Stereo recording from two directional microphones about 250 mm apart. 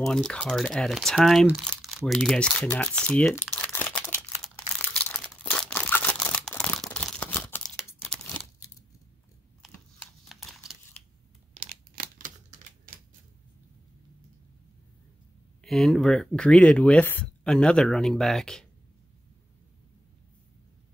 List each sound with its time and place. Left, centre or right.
0.0 s crumpling: centre
8.2 s tearing: centre
9.6 s computer keyboard: centre
11.6 s computer keyboard: right
15.6 s speech: centre